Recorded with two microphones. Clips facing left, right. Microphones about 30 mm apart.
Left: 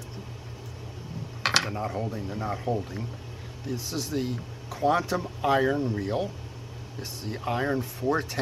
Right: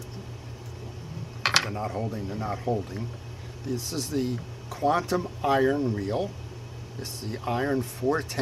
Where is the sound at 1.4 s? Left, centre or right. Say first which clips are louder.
Right 1 dB; centre.